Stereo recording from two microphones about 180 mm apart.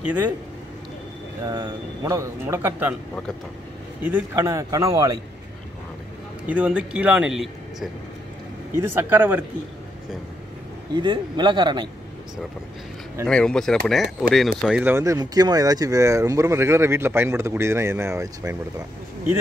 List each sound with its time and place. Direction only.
0.0 s speech: 10° right (ahead or behind)
1.5 s speech: 20° right (ahead or behind)
4.0 s speech: 10° right (ahead or behind)
6.4 s speech: 10° right (ahead or behind)
11.0 s a man's voice: 25° right (ahead or behind)
13.3 s speech: 5° left (ahead or behind)
14.6 s speech: 10° right (ahead or behind)